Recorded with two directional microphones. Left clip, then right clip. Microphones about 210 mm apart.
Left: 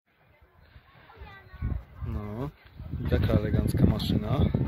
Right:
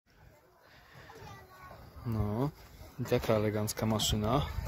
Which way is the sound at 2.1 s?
10° right (ahead or behind).